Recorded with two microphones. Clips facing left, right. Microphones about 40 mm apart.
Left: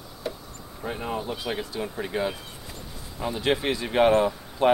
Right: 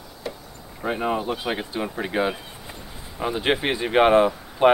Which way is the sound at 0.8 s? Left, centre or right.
Right.